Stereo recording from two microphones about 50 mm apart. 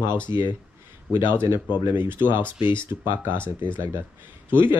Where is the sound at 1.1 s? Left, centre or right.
Right.